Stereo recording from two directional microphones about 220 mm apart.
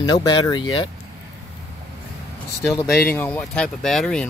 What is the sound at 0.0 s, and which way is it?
Speech, 15° left (ahead or behind).